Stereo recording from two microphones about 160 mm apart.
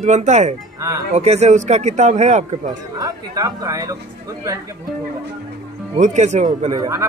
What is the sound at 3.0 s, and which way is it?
Speech, 20° right (ahead or behind).